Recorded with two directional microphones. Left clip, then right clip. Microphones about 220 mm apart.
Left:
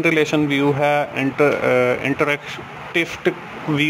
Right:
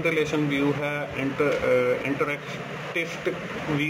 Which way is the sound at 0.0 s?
45° left (ahead or behind).